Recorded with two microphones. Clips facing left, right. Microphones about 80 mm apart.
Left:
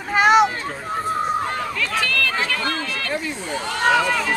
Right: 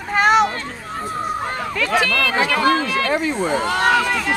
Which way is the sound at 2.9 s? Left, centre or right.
Right.